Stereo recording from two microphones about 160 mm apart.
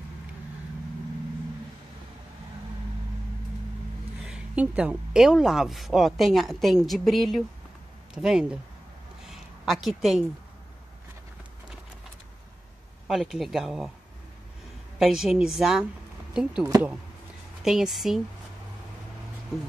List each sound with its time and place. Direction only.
4.2 s speech: 5° right (ahead or behind)
9.2 s a sound: centre (ahead or behind)
13.1 s speech: centre (ahead or behind)
15.0 s speech: centre (ahead or behind)
16.6 s speech: 20° right (ahead or behind)
17.6 s speech: centre (ahead or behind)